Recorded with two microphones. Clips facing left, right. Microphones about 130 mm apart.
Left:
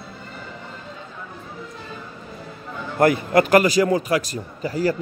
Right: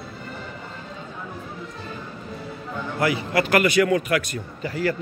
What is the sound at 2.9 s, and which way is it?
A man's voice, 45° left (ahead or behind).